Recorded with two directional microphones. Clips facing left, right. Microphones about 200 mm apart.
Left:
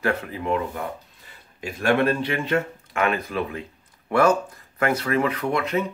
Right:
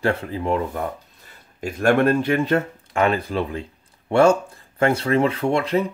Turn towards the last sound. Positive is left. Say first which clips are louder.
# right 4 dB
turn(degrees=-30)  # may be behind; listen again after turning